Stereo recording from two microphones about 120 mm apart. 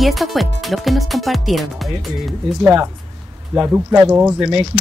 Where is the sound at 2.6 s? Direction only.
20° right (ahead or behind).